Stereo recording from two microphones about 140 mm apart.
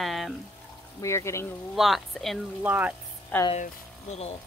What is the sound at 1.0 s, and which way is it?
Speech, 20° left (ahead or behind).